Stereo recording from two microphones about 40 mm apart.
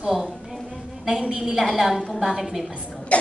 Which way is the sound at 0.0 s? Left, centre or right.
Centre.